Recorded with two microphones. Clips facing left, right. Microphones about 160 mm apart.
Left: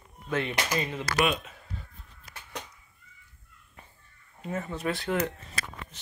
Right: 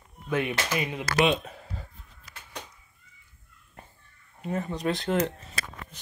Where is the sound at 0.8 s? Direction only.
15° right (ahead or behind).